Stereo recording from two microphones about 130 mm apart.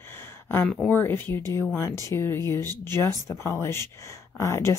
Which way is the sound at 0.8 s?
15° left (ahead or behind).